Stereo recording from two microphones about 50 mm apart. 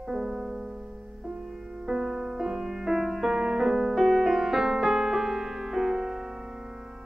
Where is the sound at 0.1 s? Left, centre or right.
Centre.